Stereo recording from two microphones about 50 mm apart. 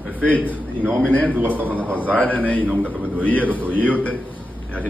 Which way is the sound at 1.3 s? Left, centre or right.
Right.